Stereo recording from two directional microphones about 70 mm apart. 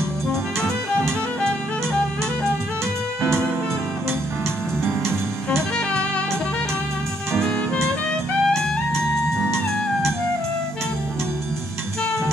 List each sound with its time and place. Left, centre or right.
0.3 s music: centre
3.2 s music: centre
4.8 s music: right
8.5 s music: centre